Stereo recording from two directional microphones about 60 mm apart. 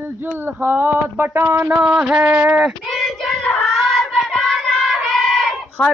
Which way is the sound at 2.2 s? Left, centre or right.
Right.